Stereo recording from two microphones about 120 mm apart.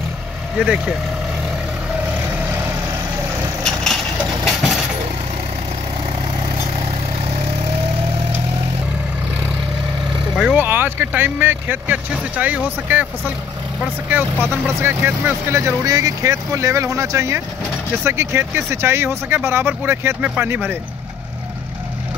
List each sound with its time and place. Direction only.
0.6 s speech: 5° right (ahead or behind)
2.3 s vehicle: 20° right (ahead or behind)
3.6 s vehicle: 5° left (ahead or behind)
10.3 s speech: 10° right (ahead or behind)
14.1 s speech: 15° right (ahead or behind)